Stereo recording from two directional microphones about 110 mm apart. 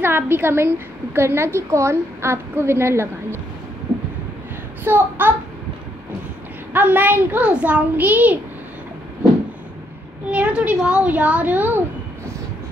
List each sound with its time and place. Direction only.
0.0 s a woman's voice: 20° right (ahead or behind)
4.8 s a woman's voice: 20° right (ahead or behind)
6.7 s a child's voice: 15° right (ahead or behind)
10.3 s a child's voice: 10° right (ahead or behind)